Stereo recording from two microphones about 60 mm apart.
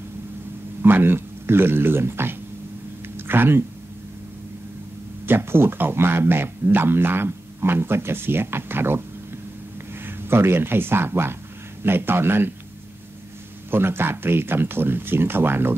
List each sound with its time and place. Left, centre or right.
0.8 s speech: right
5.2 s speech: right
13.7 s speech: right